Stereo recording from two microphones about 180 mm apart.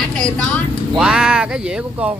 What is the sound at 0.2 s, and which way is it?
Speech, 5° left (ahead or behind).